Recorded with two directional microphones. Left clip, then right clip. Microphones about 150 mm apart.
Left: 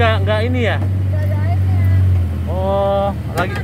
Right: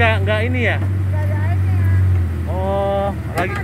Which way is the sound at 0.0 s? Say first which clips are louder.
Left 1 dB; 15° left (ahead or behind).